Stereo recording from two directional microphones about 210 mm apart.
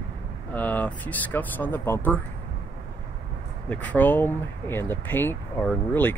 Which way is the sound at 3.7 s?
5° left (ahead or behind).